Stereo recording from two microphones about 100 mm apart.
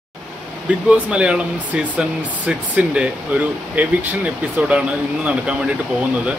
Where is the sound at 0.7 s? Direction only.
10° right (ahead or behind).